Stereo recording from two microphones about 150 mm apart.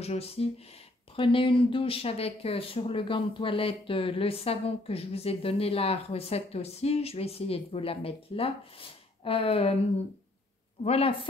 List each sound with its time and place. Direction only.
0.0 s speech: 40° left (ahead or behind)
10.8 s speech: 45° left (ahead or behind)